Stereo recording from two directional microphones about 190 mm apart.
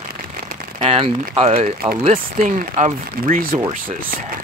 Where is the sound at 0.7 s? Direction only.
30° right (ahead or behind); by 3.5 s 45° right (ahead or behind).